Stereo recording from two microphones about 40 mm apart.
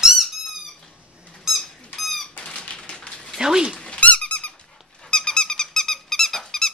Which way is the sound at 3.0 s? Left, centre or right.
Left.